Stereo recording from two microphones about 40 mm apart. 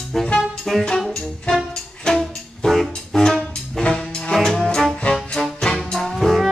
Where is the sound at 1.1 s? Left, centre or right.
Centre.